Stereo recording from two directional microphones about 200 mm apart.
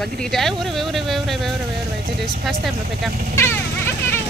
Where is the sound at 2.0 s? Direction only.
50° right (ahead or behind).